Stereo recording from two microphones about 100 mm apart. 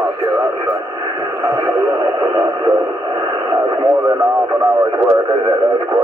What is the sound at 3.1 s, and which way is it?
Radio, 45° right (ahead or behind).